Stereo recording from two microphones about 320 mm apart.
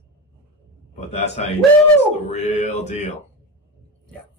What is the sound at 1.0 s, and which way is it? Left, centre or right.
Speech, centre.